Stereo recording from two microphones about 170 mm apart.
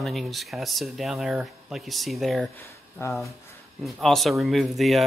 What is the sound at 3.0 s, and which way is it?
Speech, 15° left (ahead or behind).